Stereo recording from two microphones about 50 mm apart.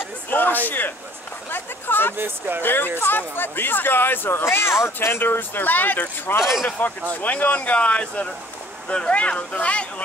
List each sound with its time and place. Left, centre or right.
0.3 s speech: left
1.5 s a sound: left
2.1 s speech: right
2.6 s speech: left
5.2 s speech: left
6.4 s speech: centre
7.2 s speech: left